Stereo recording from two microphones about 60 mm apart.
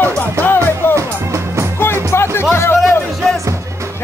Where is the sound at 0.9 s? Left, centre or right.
Right.